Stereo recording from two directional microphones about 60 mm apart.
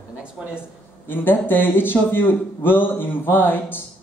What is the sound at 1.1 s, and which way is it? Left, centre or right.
A man's voice, left.